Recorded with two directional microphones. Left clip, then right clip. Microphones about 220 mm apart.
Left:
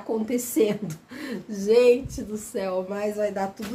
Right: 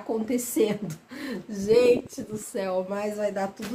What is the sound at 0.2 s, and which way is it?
A woman's voice, 5° right (ahead or behind).